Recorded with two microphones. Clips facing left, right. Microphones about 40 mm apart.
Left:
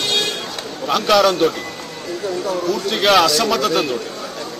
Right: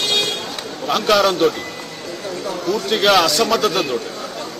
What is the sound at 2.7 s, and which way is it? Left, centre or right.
Speech, centre.